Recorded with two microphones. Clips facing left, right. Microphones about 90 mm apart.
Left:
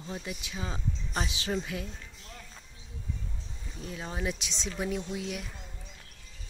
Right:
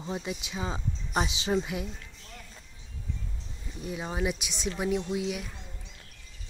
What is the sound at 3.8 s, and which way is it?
Speech, 15° right (ahead or behind).